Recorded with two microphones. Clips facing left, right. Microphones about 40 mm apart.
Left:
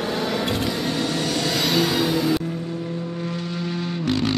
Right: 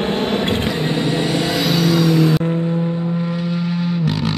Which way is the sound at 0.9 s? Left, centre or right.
Right.